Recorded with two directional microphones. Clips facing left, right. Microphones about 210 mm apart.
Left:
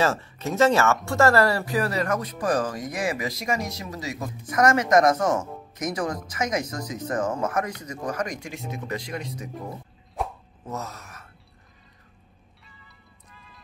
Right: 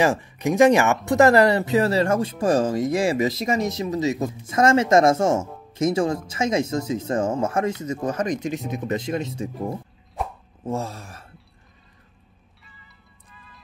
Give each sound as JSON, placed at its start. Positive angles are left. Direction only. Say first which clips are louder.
{"t": 0.0, "sound": "speech", "louder": "right 4 dB", "side_deg": -15}
{"t": 10.2, "sound": "a sound", "louder": "right 1 dB", "side_deg": 0}
{"t": 10.6, "sound": "speech", "louder": "right 7 dB", "side_deg": -30}